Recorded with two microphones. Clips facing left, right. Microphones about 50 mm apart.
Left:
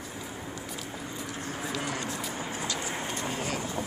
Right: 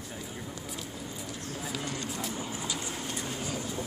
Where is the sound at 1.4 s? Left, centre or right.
Centre.